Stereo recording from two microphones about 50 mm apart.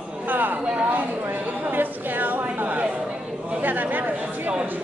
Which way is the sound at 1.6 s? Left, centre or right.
Right.